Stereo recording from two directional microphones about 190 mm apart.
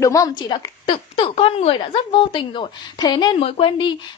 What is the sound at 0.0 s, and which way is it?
A woman's voice, 15° left (ahead or behind).